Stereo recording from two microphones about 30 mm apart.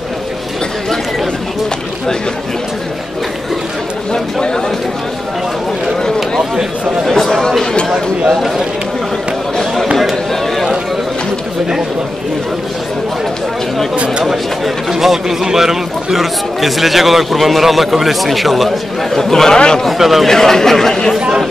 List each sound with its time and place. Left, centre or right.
4.1 s speech: left
7.1 s speech: centre
8.3 s a man's voice: centre
14.9 s a man's voice: centre
19.1 s speech: centre
19.5 s speech: left
19.9 s a man's voice: centre
20.2 s speech: centre